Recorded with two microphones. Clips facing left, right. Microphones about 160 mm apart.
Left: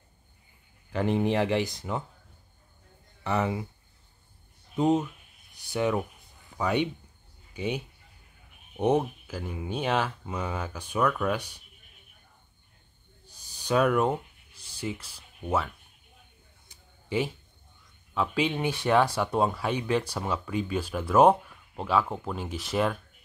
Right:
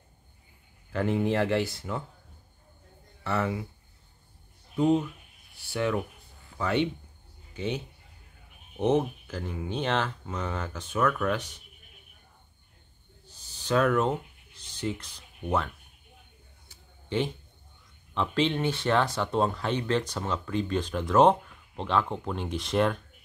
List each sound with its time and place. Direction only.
0.9 s speech: 20° left (ahead or behind)
3.3 s speech: 15° left (ahead or behind)
4.7 s speech: 20° left (ahead or behind)
13.3 s a sound: 15° left (ahead or behind)
18.1 s speech: 5° left (ahead or behind)